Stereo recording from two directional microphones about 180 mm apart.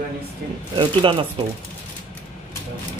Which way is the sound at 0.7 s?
30° right (ahead or behind).